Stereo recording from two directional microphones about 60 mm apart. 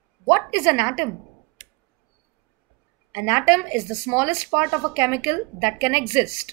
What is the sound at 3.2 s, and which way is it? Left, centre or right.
A woman's voice, right.